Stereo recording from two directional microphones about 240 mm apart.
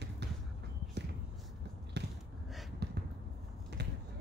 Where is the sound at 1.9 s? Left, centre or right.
Right.